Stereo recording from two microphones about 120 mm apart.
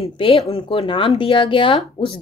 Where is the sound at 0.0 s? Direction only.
50° left (ahead or behind).